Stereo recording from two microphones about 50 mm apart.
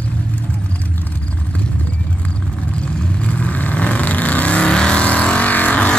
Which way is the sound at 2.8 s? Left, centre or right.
Left.